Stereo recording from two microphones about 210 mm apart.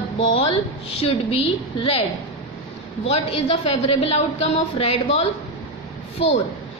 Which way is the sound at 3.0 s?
30° left (ahead or behind).